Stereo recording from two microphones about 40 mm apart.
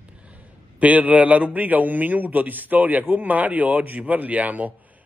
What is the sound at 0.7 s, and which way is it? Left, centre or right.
A man's voice, right.